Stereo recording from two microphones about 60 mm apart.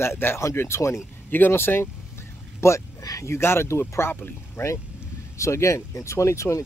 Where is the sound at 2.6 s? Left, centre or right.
Left.